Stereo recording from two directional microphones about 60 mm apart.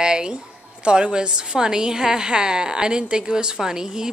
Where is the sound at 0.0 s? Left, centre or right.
Centre.